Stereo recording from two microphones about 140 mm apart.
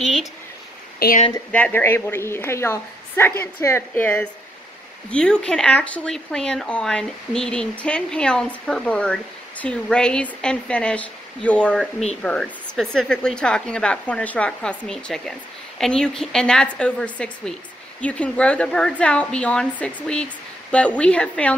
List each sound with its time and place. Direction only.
0.0 s speech: centre (ahead or behind)
0.9 s speech: 90° left
1.5 s a woman's voice: 10° left (ahead or behind)